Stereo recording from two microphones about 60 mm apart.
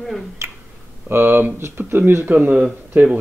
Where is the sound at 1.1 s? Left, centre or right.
Right.